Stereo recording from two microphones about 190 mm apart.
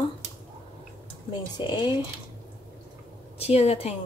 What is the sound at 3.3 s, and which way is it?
Speech, 35° left (ahead or behind).